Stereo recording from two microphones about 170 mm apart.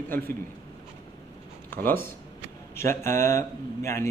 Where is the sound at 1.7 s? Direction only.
10° left (ahead or behind).